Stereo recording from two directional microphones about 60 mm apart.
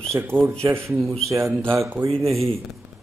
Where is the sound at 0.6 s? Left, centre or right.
Right.